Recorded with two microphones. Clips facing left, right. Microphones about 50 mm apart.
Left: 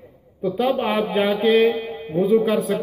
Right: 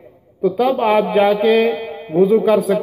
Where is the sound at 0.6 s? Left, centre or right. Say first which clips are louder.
Right 5 dB; centre.